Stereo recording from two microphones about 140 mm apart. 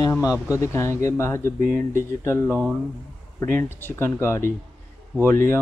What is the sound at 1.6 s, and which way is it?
Speech, 70° right (ahead or behind).